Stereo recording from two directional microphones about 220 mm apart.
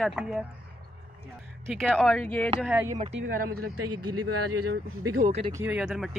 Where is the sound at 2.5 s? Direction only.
5° right (ahead or behind).